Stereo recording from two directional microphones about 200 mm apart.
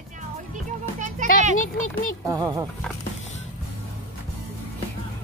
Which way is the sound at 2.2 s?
15° right (ahead or behind).